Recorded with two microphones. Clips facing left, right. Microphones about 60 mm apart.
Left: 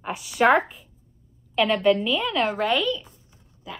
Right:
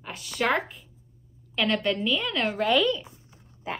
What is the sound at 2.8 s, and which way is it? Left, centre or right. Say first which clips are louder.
Speech: even; right.